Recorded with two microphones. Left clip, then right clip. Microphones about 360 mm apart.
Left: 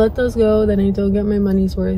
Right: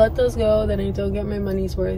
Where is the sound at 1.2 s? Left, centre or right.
Centre.